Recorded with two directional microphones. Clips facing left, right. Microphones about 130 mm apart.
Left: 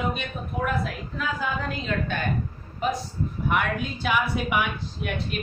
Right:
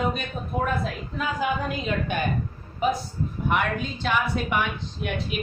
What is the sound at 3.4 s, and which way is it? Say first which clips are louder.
Speech: right 1 dB; 5° left (ahead or behind).